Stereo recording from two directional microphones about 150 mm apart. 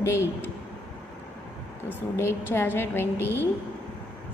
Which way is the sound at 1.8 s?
15° left (ahead or behind).